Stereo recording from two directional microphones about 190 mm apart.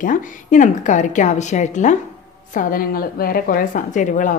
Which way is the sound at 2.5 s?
50° left (ahead or behind).